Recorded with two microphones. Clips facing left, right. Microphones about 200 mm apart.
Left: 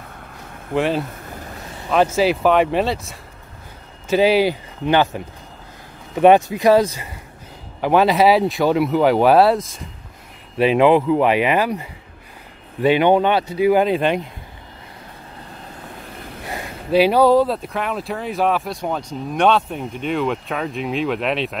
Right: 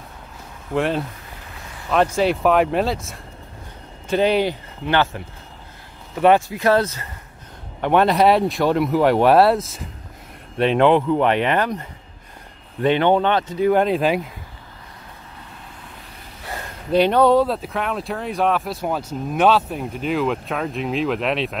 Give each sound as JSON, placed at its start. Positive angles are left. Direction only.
{"t": 0.7, "sound": "speech", "side_deg": 0}
{"t": 4.8, "sound": "speech", "side_deg": 15}
{"t": 7.8, "sound": "speech", "side_deg": 0}
{"t": 16.9, "sound": "speech", "side_deg": 5}